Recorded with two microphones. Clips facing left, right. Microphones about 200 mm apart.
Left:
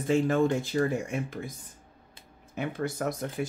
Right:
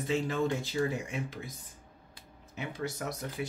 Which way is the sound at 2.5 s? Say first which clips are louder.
Left 5 dB; 55° left (ahead or behind).